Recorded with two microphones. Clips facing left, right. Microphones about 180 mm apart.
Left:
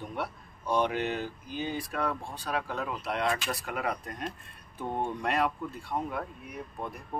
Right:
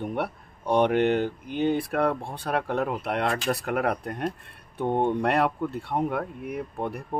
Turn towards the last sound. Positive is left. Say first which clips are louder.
# right 8 dB
turn(degrees=-65)  # may be behind; listen again after turning